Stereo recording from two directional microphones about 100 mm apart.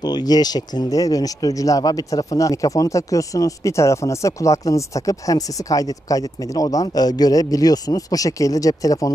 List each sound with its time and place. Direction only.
0.0 s speech: 40° left (ahead or behind)